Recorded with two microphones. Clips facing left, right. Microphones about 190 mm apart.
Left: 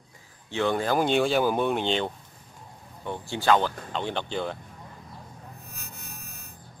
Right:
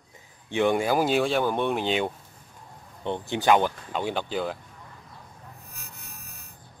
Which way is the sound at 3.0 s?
20° right (ahead or behind).